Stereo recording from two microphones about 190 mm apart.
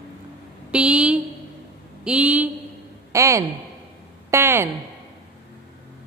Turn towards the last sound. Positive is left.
turn(degrees=-15)  # may be behind; listen again after turning